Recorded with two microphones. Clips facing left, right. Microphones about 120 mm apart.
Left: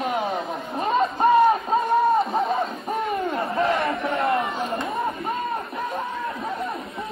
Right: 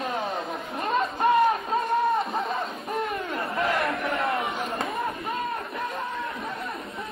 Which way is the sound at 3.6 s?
Centre (ahead or behind).